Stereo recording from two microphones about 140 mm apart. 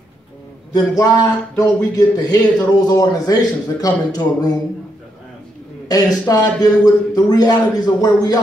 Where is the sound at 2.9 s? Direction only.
25° left (ahead or behind).